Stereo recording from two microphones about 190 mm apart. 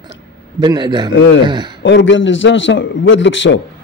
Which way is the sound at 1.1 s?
75° left (ahead or behind).